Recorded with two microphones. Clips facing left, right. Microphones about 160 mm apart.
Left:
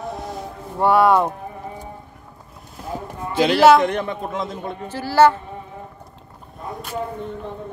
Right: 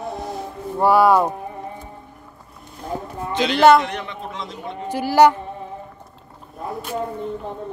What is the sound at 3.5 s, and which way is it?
Speech, 5° left (ahead or behind).